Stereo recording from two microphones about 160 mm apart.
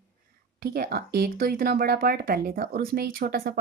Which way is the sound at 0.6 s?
70° right (ahead or behind).